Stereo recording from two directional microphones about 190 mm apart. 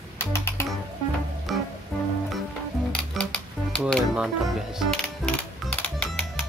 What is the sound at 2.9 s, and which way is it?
Music, 5° left (ahead or behind).